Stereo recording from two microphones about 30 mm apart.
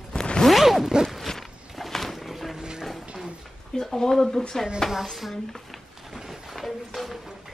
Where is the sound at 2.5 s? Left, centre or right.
Right.